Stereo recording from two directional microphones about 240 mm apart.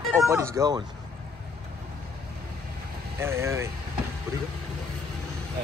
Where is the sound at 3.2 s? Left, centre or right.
Centre.